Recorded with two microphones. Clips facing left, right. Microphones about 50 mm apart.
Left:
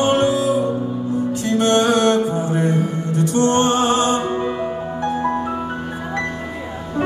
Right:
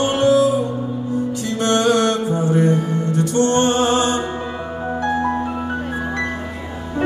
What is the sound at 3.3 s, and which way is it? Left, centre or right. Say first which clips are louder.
Music: even; left.